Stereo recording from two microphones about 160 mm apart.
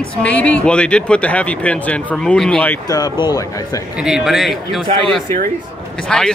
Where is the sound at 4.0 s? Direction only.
5° right (ahead or behind).